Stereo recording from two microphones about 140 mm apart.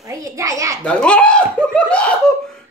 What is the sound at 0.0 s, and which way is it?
Speech, 25° right (ahead or behind).